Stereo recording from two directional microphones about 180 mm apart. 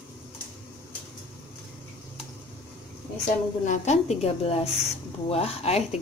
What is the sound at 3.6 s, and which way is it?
A woman's voice, 40° left (ahead or behind).